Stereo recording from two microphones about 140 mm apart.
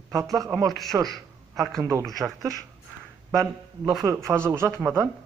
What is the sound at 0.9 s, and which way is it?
Speech, 25° right (ahead or behind).